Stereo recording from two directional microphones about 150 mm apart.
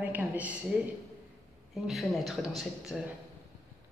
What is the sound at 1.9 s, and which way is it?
A man's voice, centre (ahead or behind).